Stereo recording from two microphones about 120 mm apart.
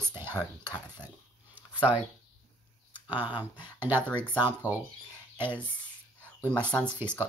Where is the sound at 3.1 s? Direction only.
15° right (ahead or behind).